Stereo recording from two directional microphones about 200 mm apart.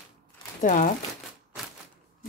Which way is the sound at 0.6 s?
40° left (ahead or behind).